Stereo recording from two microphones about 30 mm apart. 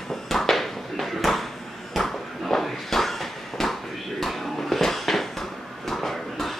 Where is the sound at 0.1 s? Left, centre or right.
Centre.